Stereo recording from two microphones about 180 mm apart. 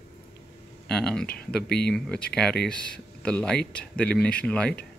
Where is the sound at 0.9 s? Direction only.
5° left (ahead or behind).